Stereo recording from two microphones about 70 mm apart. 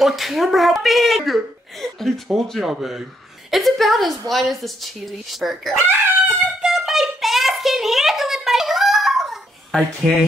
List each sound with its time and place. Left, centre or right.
0.0 s speech: centre
5.8 s speech: right
6.6 s a sound: centre